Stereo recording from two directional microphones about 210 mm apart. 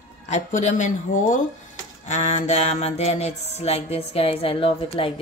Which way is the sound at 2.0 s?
35° left (ahead or behind).